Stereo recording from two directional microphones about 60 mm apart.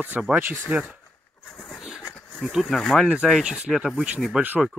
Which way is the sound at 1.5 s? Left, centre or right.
Centre.